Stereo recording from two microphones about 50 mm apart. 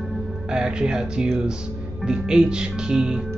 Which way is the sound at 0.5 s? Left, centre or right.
Centre.